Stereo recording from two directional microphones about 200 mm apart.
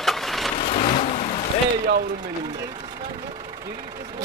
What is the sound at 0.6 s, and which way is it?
Vehicle, 30° left (ahead or behind).